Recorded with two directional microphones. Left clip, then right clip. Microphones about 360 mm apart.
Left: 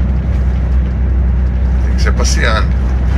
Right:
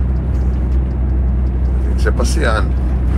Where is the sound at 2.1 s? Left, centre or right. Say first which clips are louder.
Left 2 dB; centre.